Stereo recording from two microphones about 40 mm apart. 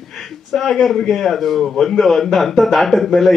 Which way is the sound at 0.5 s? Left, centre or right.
Centre.